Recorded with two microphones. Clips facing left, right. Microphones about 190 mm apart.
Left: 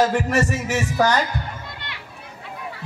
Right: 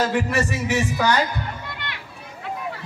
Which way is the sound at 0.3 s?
40° left (ahead or behind).